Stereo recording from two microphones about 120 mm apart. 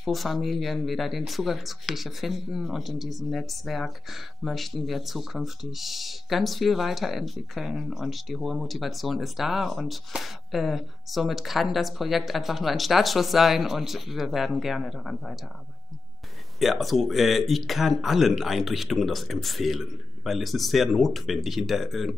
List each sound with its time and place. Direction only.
0.0 s speech: centre (ahead or behind)
16.5 s speech: centre (ahead or behind)